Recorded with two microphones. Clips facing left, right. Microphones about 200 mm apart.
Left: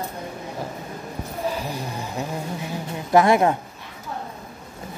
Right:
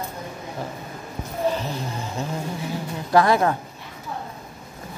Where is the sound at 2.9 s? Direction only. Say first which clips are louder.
Left 2 dB; 20° left (ahead or behind).